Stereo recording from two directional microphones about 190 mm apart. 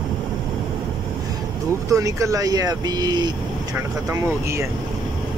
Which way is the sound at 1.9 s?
15° right (ahead or behind).